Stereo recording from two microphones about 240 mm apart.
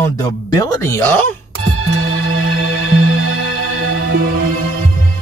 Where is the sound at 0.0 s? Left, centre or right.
Centre.